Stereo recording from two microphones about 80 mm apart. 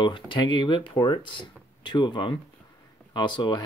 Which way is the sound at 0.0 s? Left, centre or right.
Left.